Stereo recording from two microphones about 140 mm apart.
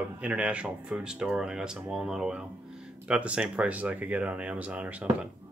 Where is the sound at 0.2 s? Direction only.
10° right (ahead or behind).